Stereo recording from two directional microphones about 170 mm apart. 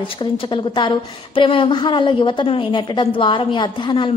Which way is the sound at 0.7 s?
30° left (ahead or behind).